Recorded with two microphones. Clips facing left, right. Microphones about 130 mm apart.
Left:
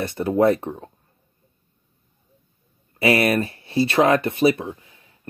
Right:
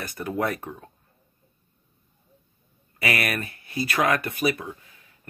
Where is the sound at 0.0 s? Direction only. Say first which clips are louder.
Left 9 dB; 25° left (ahead or behind).